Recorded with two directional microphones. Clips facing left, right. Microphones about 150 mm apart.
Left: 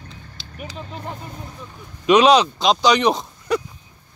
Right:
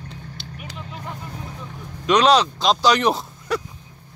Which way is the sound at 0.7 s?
30° left (ahead or behind).